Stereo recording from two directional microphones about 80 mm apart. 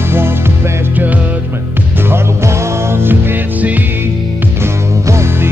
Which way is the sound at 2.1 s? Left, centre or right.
Right.